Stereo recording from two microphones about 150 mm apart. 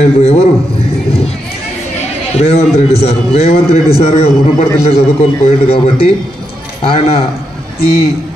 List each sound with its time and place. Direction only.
0.0 s a man's voice: 45° left (ahead or behind)
2.3 s a man's voice: 45° left (ahead or behind)
7.8 s a man's voice: 90° left